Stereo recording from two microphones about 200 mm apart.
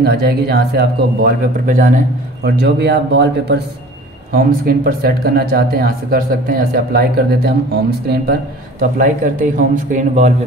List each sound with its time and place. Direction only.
0.0 s speech: 50° right (ahead or behind)
2.4 s speech: 55° right (ahead or behind)
4.3 s speech: 45° right (ahead or behind)